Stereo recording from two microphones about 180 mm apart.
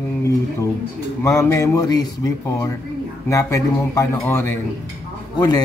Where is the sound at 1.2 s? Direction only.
15° left (ahead or behind).